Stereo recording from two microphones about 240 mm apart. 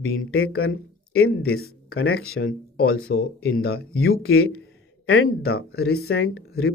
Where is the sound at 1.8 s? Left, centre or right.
Left.